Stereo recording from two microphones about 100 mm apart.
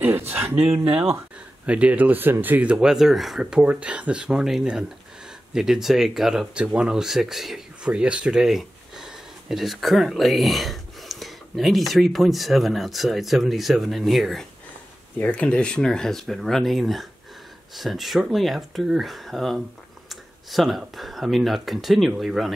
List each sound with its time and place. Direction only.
0.3 s a sound: 20° right (ahead or behind)
0.8 s speech: 15° right (ahead or behind)
15.1 s speech: 15° left (ahead or behind); by 22.5 s 5° right (ahead or behind)